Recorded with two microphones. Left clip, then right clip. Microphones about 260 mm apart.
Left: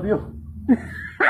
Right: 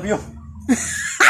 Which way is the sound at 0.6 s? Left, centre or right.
Right.